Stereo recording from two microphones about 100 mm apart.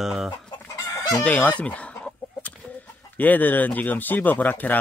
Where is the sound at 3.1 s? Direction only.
15° left (ahead or behind).